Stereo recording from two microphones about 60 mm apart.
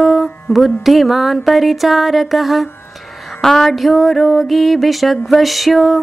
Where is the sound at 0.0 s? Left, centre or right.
Centre.